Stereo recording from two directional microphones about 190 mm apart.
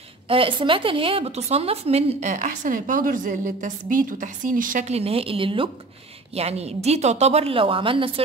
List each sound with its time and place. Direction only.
0.3 s a woman's voice: 30° right (ahead or behind)